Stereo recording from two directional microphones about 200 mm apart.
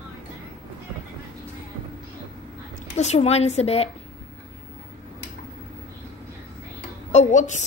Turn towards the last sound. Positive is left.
turn(degrees=35)  # may be behind; listen again after turning